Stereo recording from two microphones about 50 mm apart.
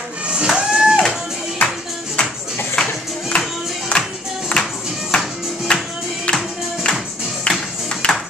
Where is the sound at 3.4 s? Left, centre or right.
Centre.